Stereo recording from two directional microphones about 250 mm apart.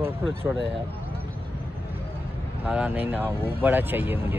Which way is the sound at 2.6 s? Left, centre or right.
Centre.